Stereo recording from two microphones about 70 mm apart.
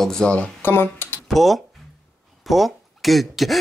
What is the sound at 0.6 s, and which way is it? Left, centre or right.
Speech, left.